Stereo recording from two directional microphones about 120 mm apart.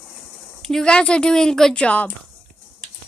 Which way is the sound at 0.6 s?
5° left (ahead or behind).